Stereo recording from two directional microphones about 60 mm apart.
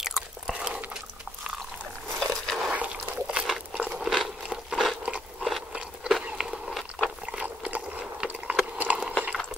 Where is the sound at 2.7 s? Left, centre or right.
Right.